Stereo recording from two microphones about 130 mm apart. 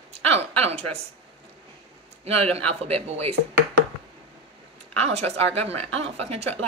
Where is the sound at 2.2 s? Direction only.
50° right (ahead or behind).